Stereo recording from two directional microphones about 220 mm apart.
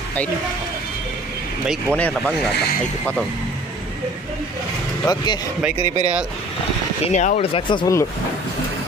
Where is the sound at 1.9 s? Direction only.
5° left (ahead or behind).